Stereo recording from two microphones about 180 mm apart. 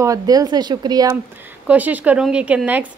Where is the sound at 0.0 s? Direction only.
20° right (ahead or behind).